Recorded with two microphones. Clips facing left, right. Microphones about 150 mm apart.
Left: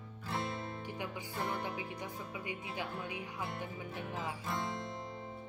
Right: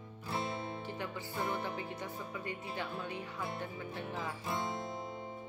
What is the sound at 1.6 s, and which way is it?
Speech, 10° left (ahead or behind).